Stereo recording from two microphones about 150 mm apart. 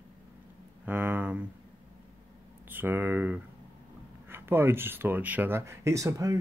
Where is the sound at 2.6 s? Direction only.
15° right (ahead or behind).